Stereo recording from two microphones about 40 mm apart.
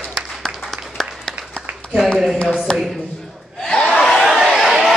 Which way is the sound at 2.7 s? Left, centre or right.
Centre.